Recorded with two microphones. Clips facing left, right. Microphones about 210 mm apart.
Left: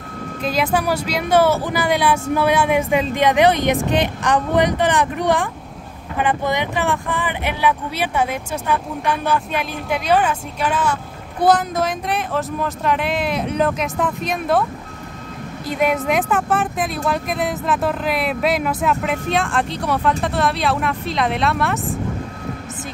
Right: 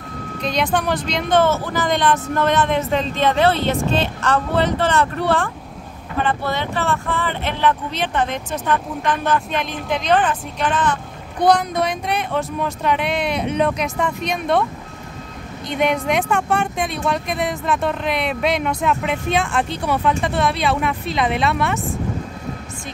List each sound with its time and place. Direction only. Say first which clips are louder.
0.4 s speech: left 1 dB; 5° left (ahead or behind)
15.6 s speech: even; 5° left (ahead or behind)